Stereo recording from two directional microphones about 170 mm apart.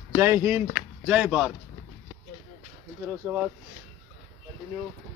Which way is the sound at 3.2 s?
10° right (ahead or behind).